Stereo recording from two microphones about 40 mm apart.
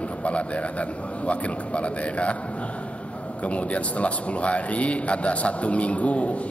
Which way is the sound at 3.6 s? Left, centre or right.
Left.